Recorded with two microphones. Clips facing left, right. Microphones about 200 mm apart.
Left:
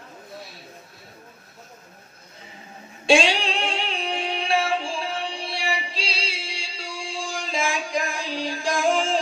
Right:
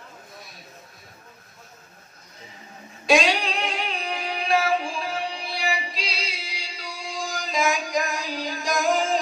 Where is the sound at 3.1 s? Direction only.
30° left (ahead or behind).